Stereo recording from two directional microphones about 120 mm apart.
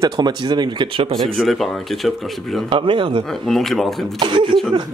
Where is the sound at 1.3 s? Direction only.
Centre (ahead or behind).